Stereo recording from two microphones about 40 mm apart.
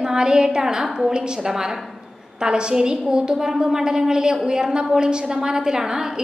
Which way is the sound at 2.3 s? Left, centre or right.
Right.